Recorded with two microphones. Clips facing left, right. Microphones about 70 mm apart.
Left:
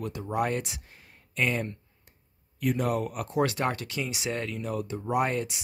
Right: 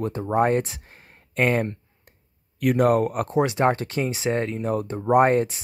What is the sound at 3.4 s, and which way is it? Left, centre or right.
Speech, right.